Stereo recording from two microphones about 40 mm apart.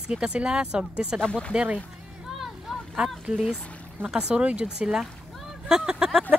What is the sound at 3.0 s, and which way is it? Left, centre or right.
Speech, right.